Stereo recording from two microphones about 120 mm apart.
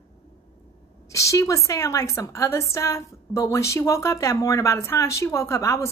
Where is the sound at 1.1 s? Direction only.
25° left (ahead or behind).